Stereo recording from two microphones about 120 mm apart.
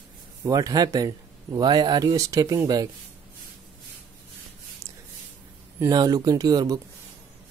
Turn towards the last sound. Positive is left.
turn(degrees=-30)  # may be behind; listen again after turning